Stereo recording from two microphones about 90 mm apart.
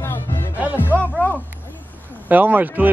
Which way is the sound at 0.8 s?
20° left (ahead or behind).